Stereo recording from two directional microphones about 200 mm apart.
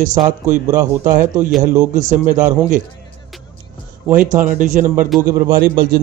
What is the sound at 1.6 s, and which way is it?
Speech, 35° right (ahead or behind).